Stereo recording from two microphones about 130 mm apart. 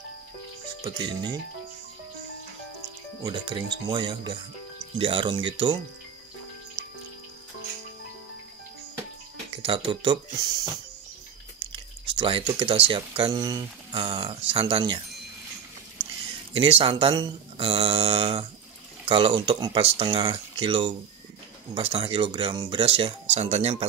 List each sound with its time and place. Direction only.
0.8 s speech: 35° right (ahead or behind)
3.3 s speech: 35° right (ahead or behind)
9.6 s speech: 45° right (ahead or behind)
10.3 s speech: 30° right (ahead or behind)
11.6 s speech: 40° right (ahead or behind)
14.0 s speech: 45° right (ahead or behind)
16.5 s speech: 45° right (ahead or behind)
23.3 s speech: 55° right (ahead or behind)